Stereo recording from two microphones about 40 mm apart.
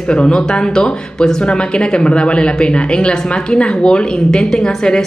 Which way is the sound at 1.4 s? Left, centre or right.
Left.